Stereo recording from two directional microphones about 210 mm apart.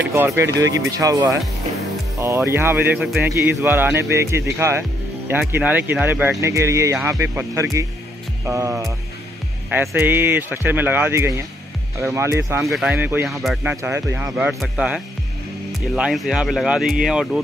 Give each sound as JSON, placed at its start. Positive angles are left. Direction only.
{"t": 0.1, "sound": "speech", "side_deg": -10}
{"t": 12.6, "sound": "speech", "side_deg": -5}